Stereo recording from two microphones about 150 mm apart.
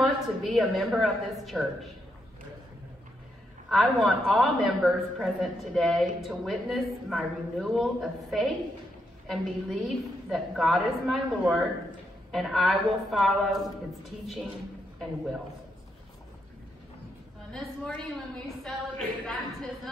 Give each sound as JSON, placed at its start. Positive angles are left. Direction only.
{"t": 0.0, "sound": "a woman's voice", "side_deg": 0}
{"t": 3.6, "sound": "a woman's voice", "side_deg": 0}
{"t": 17.5, "sound": "a woman's voice", "side_deg": 5}